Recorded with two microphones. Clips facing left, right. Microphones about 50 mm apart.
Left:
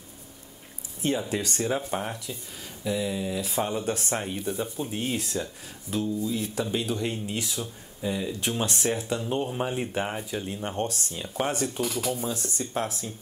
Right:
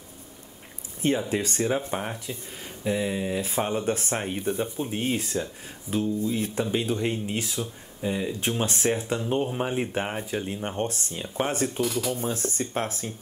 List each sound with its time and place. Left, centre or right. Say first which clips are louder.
1.3 s speech: right 2 dB; right
1.7 s speech: right 1 dB; centre
2.8 s speech: right 2 dB; right
9.4 s speech: right 2 dB; centre; by 11.2 s right
11.2 s speech: right 1 dB; centre
12.1 s speech: right 2 dB; right